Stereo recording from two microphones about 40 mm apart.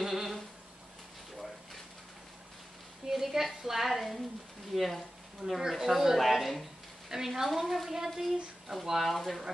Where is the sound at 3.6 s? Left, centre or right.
Centre.